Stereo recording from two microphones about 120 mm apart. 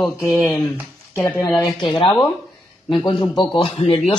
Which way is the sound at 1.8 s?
45° left (ahead or behind).